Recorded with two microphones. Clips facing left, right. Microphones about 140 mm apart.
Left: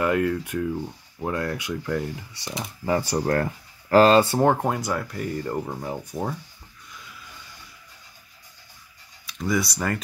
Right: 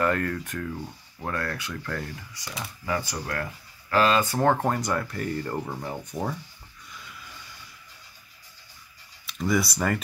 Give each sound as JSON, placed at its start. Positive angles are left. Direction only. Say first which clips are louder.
{"t": 0.0, "sound": "speech", "louder": "left 3 dB", "side_deg": 10}
{"t": 2.8, "sound": "speech", "louder": "left 7 dB", "side_deg": 35}
{"t": 4.4, "sound": "speech", "louder": "left 2 dB", "side_deg": 10}
{"t": 9.2, "sound": "speech", "louder": "even", "side_deg": 0}